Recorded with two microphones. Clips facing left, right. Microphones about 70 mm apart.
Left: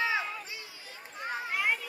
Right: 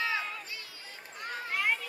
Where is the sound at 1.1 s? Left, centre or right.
Centre.